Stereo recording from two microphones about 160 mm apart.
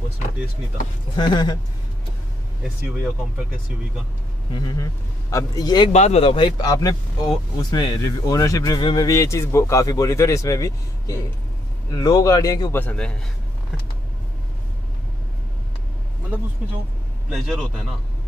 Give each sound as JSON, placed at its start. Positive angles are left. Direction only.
{"t": 1.1, "sound": "a man's voice", "side_deg": 25}
{"t": 4.6, "sound": "a man's voice", "side_deg": 25}
{"t": 5.9, "sound": "a man's voice", "side_deg": 40}
{"t": 12.7, "sound": "a man's voice", "side_deg": 10}
{"t": 17.3, "sound": "a man's voice", "side_deg": 0}